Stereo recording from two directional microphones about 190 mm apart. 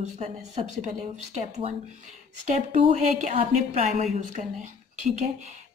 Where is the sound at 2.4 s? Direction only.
40° right (ahead or behind).